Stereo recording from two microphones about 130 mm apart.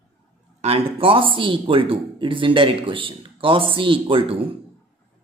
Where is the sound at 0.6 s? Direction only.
50° right (ahead or behind).